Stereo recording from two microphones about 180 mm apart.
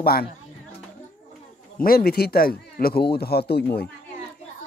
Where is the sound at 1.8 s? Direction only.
55° left (ahead or behind).